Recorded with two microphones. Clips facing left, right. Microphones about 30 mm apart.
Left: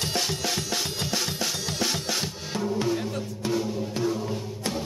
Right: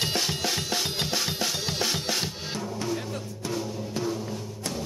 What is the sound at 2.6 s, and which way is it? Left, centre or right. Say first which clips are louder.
Music: left 6 dB; centre.